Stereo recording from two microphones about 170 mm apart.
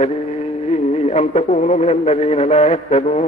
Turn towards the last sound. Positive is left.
turn(degrees=40)  # may be behind; listen again after turning